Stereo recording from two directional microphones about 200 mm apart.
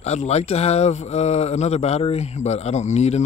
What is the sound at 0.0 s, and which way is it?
Speech, 35° left (ahead or behind).